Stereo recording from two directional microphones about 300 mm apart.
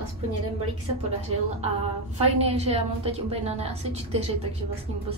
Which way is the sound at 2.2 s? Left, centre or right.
Centre.